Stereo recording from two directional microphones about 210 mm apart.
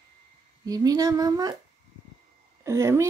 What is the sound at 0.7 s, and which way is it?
Speech, 15° right (ahead or behind).